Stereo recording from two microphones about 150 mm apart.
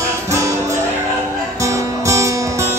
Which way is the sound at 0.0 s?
20° right (ahead or behind).